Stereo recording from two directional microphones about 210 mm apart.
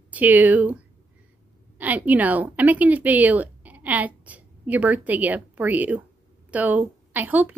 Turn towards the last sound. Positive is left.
turn(degrees=-10)  # may be behind; listen again after turning